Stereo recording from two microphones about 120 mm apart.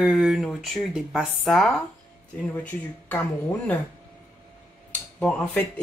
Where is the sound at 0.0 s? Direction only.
5° right (ahead or behind).